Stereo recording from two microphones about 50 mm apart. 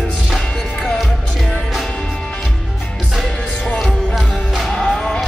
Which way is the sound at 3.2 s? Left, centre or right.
Centre.